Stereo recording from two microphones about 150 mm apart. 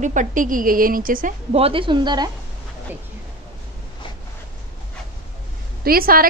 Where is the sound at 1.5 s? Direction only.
40° right (ahead or behind).